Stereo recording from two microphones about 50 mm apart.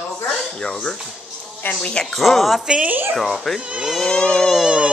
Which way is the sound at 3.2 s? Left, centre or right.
Centre.